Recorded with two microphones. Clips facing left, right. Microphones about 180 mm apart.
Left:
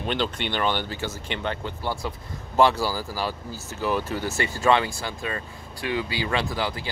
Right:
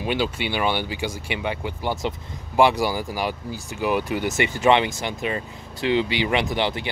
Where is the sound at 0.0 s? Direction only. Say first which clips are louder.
Right 3 dB; 10° right (ahead or behind).